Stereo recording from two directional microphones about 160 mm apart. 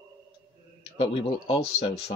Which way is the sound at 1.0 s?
35° left (ahead or behind).